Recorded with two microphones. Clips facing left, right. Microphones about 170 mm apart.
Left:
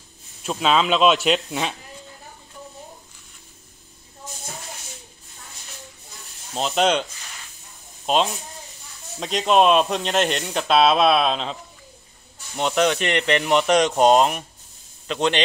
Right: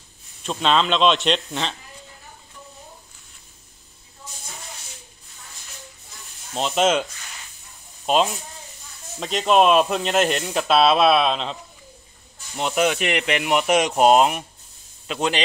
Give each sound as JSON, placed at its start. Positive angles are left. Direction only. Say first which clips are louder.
{"t": 0.4, "sound": "speech", "louder": "even", "side_deg": 5}
{"t": 6.5, "sound": "speech", "louder": "even", "side_deg": 0}
{"t": 8.1, "sound": "speech", "louder": "right 1 dB", "side_deg": 0}
{"t": 12.5, "sound": "speech", "louder": "left 1 dB", "side_deg": -5}
{"t": 14.0, "sound": "speech", "louder": "right 3 dB", "side_deg": 0}